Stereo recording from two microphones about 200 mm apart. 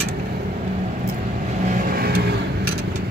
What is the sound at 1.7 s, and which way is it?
Vehicle, 45° right (ahead or behind).